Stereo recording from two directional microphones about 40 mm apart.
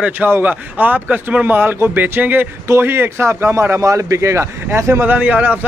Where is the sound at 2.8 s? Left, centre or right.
Right.